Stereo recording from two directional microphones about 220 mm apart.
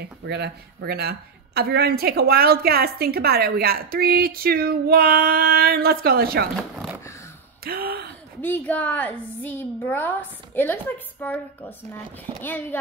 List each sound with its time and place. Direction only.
0.0 s speech: 50° right (ahead or behind)
7.6 s speech: 45° right (ahead or behind)
8.4 s a woman's voice: 10° left (ahead or behind)